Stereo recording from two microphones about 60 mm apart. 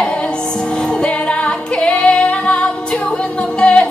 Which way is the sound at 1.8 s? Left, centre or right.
Centre.